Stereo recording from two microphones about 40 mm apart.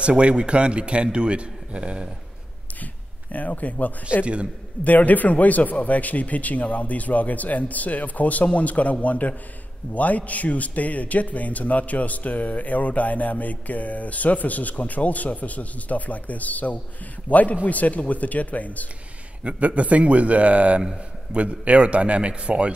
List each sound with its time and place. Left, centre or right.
0.0 s a man's voice: right
2.8 s a sound: left
4.2 s a man's voice: right
4.8 s a man's voice: left
19.4 s speech: right
20.8 s a man's voice: centre
21.4 s a man's voice: right